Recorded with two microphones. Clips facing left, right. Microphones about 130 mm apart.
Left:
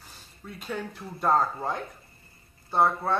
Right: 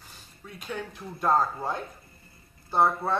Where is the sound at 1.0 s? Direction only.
Centre (ahead or behind).